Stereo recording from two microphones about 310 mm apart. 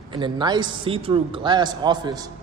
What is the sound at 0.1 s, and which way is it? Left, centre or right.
A man's voice, centre.